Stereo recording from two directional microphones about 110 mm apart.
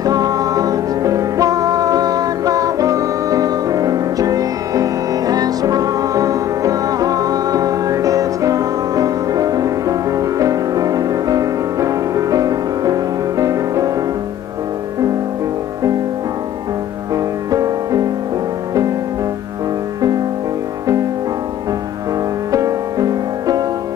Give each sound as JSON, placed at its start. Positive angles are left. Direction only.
{"t": 0.0, "sound": "music", "side_deg": -35}
{"t": 17.1, "sound": "music", "side_deg": -30}
{"t": 22.5, "sound": "music", "side_deg": -30}